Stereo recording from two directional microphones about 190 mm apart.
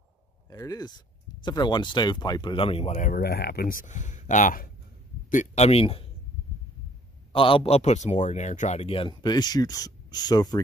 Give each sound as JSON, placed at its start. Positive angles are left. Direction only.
{"t": 0.5, "sound": "speech", "side_deg": 20}
{"t": 7.3, "sound": "speech", "side_deg": 30}